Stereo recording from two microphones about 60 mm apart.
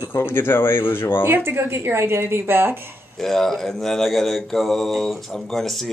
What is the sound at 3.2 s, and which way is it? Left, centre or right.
Mantra, centre.